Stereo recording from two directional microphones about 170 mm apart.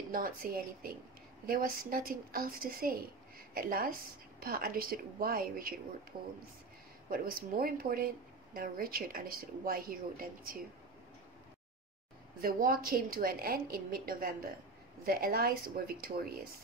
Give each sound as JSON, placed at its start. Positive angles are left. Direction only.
{"t": 0.1, "sound": "a woman's voice", "side_deg": -55}
{"t": 6.1, "sound": "speech", "side_deg": -30}
{"t": 7.1, "sound": "a woman's voice", "side_deg": -60}
{"t": 12.4, "sound": "a woman's voice", "side_deg": -60}